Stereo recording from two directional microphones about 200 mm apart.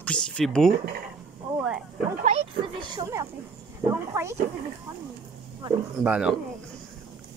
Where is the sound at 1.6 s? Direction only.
5° right (ahead or behind).